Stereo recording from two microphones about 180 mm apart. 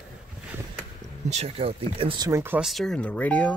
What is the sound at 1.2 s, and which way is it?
Speech, 35° right (ahead or behind).